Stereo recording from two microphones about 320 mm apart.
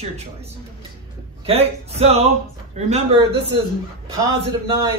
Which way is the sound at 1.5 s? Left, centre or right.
Centre.